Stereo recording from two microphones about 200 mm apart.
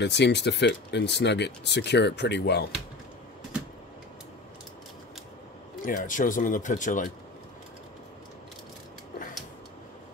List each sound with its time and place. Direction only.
0.0 s speech: 60° left (ahead or behind)
5.9 s speech: 40° left (ahead or behind)